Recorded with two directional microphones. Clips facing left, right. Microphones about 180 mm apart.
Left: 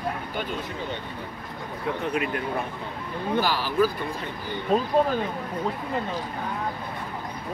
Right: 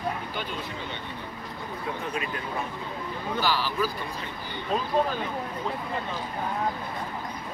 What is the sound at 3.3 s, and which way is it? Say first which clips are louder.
Speech: left 3 dB; 50° left (ahead or behind).